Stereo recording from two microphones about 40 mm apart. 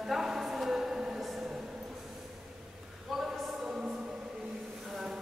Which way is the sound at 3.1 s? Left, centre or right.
Centre.